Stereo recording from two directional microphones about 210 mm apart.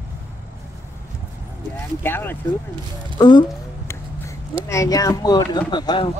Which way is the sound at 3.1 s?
20° left (ahead or behind).